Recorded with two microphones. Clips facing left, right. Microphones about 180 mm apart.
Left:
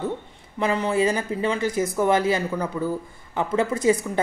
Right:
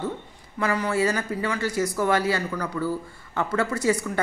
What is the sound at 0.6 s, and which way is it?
Speech, 20° left (ahead or behind).